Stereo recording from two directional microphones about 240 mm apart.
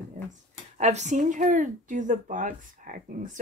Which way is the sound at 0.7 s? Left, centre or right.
Right.